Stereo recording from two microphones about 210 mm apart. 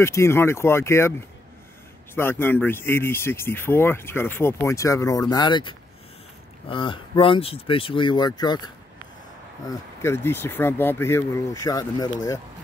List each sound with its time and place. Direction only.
0.0 s speech: 10° left (ahead or behind)
2.1 s speech: 10° left (ahead or behind)
10.0 s speech: 10° left (ahead or behind)